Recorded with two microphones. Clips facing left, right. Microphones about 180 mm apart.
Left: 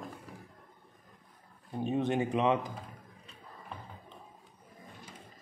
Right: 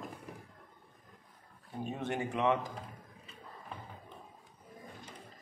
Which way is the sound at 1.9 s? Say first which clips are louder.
Left 7 dB; 20° left (ahead or behind).